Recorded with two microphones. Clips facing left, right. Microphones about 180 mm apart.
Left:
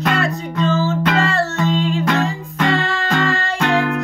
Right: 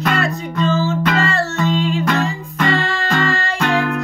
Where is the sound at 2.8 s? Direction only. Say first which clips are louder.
Even; 75° left (ahead or behind).